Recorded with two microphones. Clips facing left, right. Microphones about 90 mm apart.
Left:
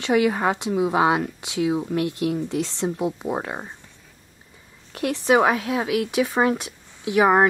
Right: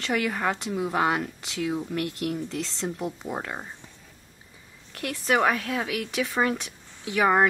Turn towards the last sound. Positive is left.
turn(degrees=15)  # may be behind; listen again after turning